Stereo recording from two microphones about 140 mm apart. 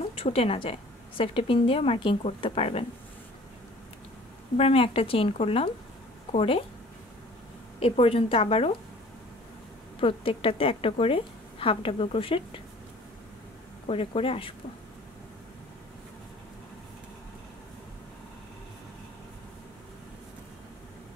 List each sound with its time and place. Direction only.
0.2 s a woman's voice: 45° left (ahead or behind)
4.6 s a woman's voice: 45° left (ahead or behind)
7.8 s a woman's voice: 45° left (ahead or behind)
9.9 s a woman's voice: 40° left (ahead or behind)
13.8 s a woman's voice: 40° left (ahead or behind)